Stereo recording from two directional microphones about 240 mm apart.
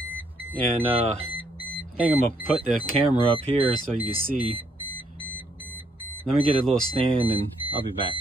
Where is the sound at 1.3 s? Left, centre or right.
Centre.